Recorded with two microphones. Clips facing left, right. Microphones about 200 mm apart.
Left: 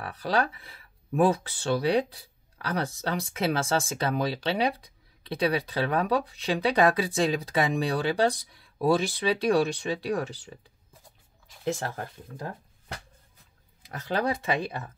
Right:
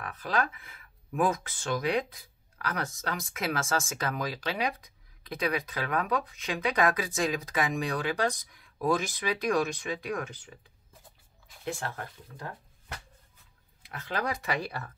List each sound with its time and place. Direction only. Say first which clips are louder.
0.0 s speech: left 4 dB; 35° left (ahead or behind)
13.8 s speech: left 5 dB; 35° left (ahead or behind)